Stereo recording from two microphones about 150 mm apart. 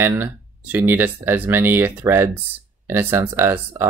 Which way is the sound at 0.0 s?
15° right (ahead or behind).